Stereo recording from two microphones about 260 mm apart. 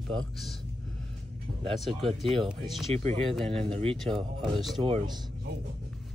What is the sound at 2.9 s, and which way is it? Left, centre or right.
Speech, right.